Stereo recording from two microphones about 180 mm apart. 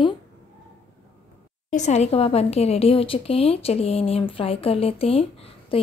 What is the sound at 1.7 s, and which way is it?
A woman's voice, 40° left (ahead or behind).